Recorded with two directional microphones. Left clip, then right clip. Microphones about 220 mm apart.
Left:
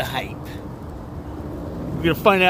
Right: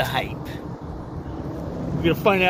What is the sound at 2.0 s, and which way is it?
Speech, 30° left (ahead or behind).